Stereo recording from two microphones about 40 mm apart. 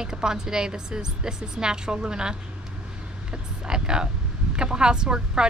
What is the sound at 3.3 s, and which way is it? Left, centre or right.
Vehicle, right.